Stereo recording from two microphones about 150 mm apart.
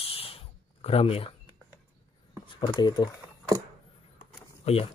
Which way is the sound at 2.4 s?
30° left (ahead or behind).